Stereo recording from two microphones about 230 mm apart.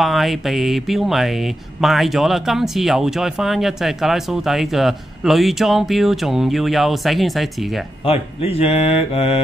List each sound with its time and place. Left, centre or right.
0.0 s speech: centre
8.0 s speech: left